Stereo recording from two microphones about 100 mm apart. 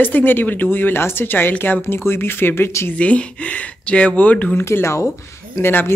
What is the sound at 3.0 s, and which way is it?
Speech, 15° left (ahead or behind).